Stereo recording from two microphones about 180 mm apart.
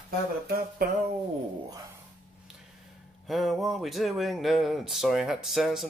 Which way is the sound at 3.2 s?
Centre (ahead or behind).